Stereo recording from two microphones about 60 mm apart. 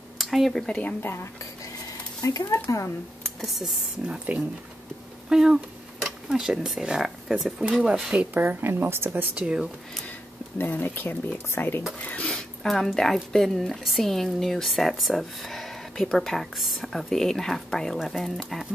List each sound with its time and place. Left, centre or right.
0.2 s speech: centre
0.7 s speech: left
1.0 s speech: left
2.2 s speech: left
3.3 s speech: centre
4.3 s speech: right
5.3 s speech: centre
8.3 s speech: right
9.3 s speech: centre
10.6 s speech: left
12.2 s speech: centre